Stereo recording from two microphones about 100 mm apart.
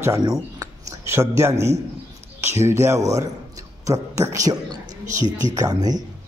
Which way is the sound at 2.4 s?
25° right (ahead or behind).